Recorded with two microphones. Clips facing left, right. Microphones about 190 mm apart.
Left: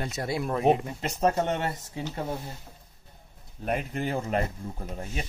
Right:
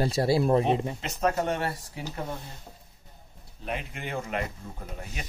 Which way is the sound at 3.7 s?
40° left (ahead or behind).